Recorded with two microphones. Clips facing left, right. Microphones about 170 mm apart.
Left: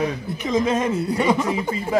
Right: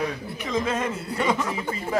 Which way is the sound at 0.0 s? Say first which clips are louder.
Left 5 dB; 20° left (ahead or behind).